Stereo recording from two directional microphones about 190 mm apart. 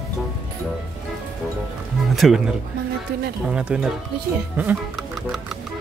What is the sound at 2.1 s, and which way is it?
Speech, centre (ahead or behind).